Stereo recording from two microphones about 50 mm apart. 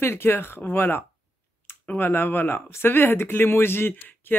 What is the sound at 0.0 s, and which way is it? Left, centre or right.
Speech, left.